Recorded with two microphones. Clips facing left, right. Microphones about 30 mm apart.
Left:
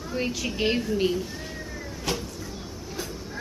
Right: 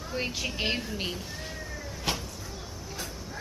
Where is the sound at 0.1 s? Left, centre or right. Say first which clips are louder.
Left 3 dB; centre.